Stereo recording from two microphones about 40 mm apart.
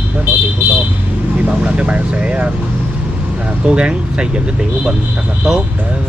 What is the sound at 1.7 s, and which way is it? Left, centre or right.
Speech, right.